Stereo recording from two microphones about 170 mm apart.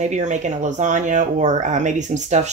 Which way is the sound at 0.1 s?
45° right (ahead or behind).